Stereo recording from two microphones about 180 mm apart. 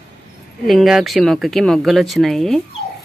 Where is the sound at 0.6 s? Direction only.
Centre (ahead or behind).